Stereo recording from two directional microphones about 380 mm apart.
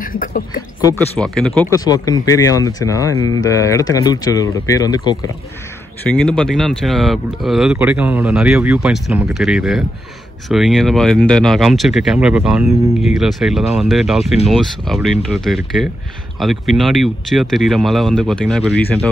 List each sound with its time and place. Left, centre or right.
0.0 s speech: left
1.1 s speech: centre